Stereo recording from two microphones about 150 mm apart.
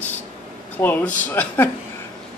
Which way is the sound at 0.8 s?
15° left (ahead or behind).